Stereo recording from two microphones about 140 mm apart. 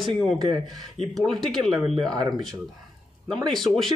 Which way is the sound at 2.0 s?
30° right (ahead or behind).